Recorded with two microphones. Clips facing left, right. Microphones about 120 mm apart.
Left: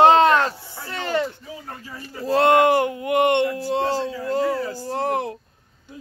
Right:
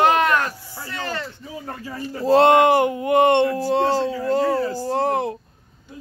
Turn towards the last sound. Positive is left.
turn(degrees=-25)  # may be behind; listen again after turning